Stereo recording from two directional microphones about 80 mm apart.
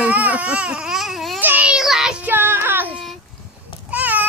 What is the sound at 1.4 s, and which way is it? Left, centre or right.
Speech, right.